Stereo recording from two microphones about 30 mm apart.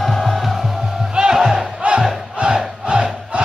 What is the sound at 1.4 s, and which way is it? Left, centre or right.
Crowd, centre.